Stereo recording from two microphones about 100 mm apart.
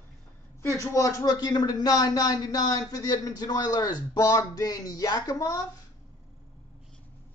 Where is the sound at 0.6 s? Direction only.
30° left (ahead or behind).